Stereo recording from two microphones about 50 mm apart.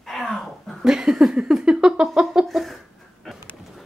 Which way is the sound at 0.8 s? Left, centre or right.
Centre.